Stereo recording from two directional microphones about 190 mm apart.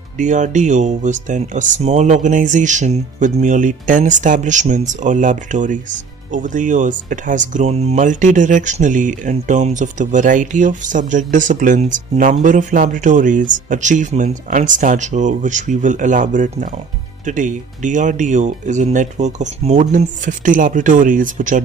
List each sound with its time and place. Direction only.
0.2 s speech: 40° right (ahead or behind)